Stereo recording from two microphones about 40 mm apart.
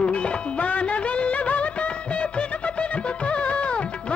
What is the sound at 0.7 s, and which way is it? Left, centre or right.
Music of bollywood, left.